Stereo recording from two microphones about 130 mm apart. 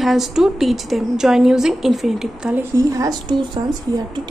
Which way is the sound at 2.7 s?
30° right (ahead or behind).